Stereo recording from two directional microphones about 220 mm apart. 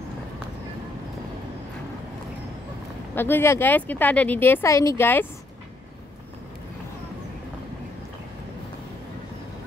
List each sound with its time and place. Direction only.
3.2 s speech: 10° left (ahead or behind)